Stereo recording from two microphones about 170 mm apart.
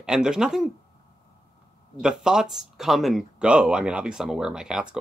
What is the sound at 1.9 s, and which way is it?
Speech, 5° right (ahead or behind).